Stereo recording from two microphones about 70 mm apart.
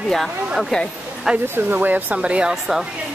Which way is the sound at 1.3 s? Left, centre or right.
Centre.